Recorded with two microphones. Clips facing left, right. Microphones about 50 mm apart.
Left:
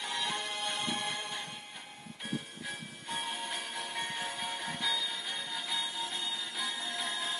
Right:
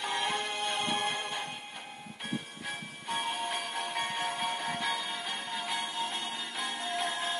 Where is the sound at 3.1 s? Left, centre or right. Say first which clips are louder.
Right 4 dB; right.